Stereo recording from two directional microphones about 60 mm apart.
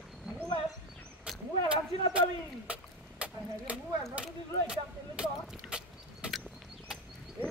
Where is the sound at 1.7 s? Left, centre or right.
Right.